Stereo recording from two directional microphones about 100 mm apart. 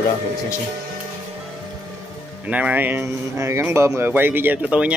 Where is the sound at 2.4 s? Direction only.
15° right (ahead or behind).